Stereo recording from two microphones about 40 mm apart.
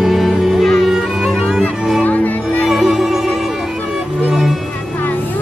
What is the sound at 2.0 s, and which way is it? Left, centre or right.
Music, left.